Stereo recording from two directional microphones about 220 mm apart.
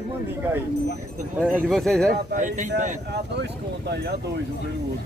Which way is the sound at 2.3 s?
35° right (ahead or behind).